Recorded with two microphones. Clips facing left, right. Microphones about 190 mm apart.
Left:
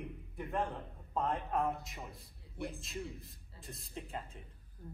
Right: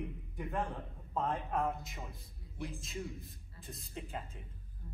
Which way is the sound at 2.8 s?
Centre (ahead or behind).